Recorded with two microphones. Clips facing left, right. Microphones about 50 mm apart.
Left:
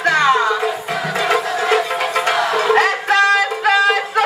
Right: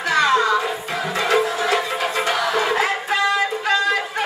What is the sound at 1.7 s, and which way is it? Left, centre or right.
Music, left.